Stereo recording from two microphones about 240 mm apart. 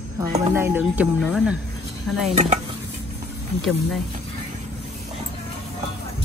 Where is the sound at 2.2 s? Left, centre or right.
Right.